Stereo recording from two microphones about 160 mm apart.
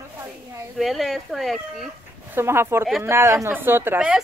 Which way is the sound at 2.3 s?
15° right (ahead or behind).